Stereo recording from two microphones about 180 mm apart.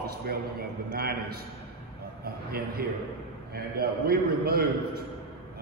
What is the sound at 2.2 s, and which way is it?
A man's voice, 55° right (ahead or behind).